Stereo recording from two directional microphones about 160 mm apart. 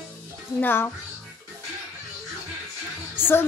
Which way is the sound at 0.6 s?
15° left (ahead or behind).